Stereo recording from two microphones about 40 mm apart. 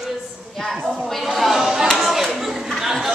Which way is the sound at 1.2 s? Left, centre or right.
Centre.